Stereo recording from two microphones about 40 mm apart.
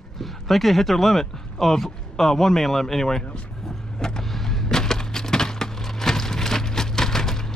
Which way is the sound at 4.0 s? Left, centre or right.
Centre.